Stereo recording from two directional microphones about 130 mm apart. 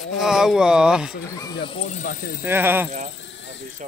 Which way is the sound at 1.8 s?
80° left.